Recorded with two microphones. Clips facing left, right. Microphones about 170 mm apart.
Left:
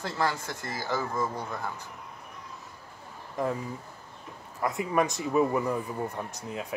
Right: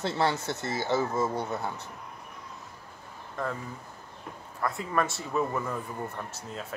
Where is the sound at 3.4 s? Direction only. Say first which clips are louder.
Left 4 dB; 15° left (ahead or behind).